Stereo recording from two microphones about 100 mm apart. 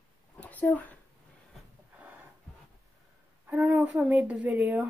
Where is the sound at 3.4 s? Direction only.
15° right (ahead or behind).